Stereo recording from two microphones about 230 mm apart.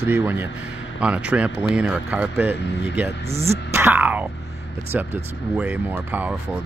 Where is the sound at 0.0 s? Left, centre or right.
Centre.